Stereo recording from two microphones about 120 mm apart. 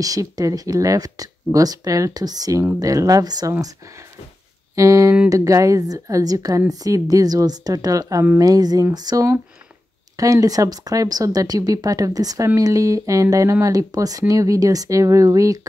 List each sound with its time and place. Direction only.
0.0 s speech: 30° right (ahead or behind)
4.7 s speech: 25° right (ahead or behind)